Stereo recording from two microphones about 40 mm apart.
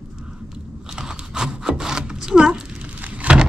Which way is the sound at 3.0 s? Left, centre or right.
Right.